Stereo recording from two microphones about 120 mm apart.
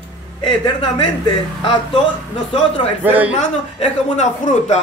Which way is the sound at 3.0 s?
15° right (ahead or behind).